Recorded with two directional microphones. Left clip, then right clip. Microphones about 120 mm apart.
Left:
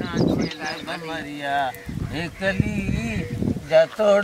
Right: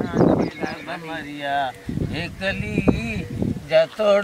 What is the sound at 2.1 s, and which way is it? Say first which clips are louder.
Speech: left 2 dB; centre (ahead or behind).